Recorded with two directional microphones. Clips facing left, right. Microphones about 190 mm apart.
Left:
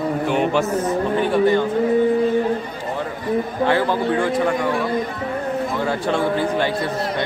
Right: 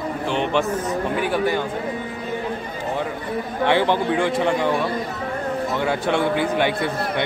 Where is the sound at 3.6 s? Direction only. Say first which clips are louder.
Right 2 dB; 20° right (ahead or behind).